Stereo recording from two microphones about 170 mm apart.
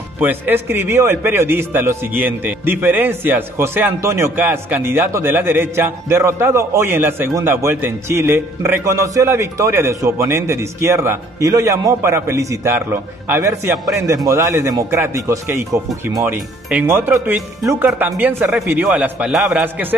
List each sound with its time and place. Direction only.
0.2 s a man's voice: 10° right (ahead or behind)